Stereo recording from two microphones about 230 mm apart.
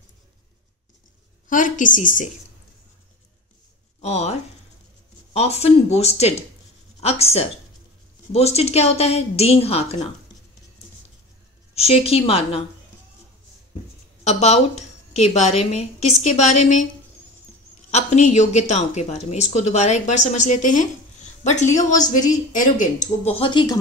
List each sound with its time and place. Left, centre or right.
1.5 s speech: left
4.0 s a woman's voice: left
11.7 s a woman's voice: left
14.2 s a woman's voice: left
17.9 s a woman's voice: left